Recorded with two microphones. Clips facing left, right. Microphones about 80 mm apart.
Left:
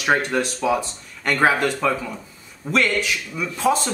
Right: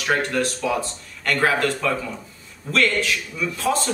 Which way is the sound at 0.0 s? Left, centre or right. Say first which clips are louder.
Left 2 dB; left.